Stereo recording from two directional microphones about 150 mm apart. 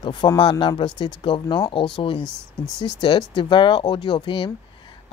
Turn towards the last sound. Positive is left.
turn(degrees=30)  # may be behind; listen again after turning